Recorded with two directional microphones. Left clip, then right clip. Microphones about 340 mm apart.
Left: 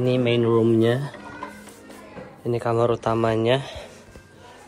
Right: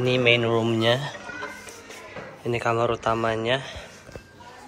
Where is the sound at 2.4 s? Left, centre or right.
Centre.